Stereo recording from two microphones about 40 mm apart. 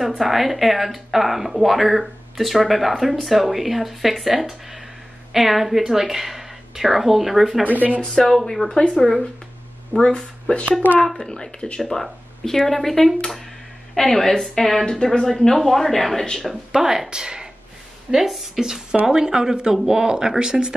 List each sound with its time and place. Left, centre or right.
0.2 s speech: centre
7.6 s speech: right
8.1 s speech: centre
8.6 s speech: left
10.5 s speech: left
10.8 s a child's voice: left
11.1 s speech: centre
11.8 s speech: centre
16.7 s speech: centre